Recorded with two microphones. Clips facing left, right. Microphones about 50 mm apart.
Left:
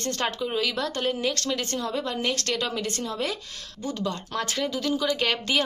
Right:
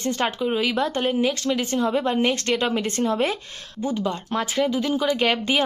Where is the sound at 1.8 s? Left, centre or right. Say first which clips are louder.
Right 7 dB; right.